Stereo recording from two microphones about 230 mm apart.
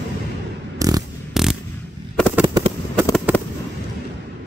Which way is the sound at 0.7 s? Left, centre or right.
Centre.